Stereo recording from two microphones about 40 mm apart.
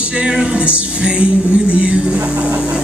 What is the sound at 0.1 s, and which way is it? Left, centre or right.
Music, right.